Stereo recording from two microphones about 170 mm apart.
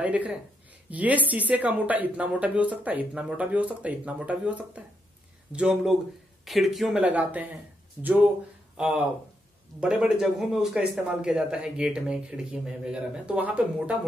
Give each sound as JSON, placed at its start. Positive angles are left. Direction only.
{"t": 0.0, "sound": "a man's voice", "side_deg": -10}
{"t": 8.7, "sound": "a man's voice", "side_deg": -10}